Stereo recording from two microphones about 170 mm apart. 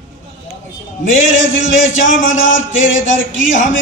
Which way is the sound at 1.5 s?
50° left (ahead or behind).